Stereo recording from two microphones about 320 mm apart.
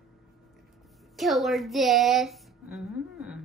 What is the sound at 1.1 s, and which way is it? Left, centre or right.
Speech, centre.